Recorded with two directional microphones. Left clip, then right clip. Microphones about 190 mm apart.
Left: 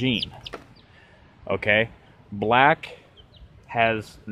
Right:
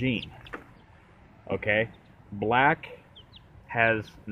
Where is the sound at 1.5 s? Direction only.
20° left (ahead or behind).